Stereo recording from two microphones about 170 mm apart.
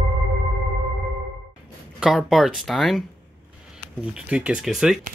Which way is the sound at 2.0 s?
Centre (ahead or behind).